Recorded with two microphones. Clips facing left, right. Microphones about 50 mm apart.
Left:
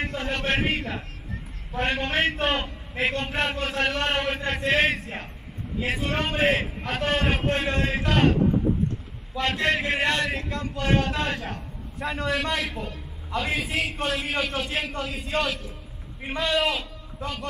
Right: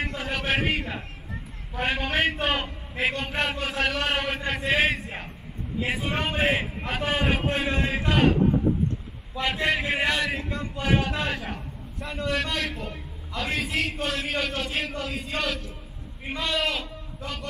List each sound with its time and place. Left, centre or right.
0.0 s a man's voice: centre
12.0 s a man's voice: left
12.3 s a man's voice: centre